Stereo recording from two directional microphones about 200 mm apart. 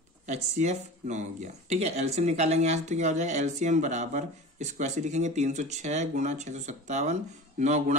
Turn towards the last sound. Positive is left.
turn(degrees=-35)  # may be behind; listen again after turning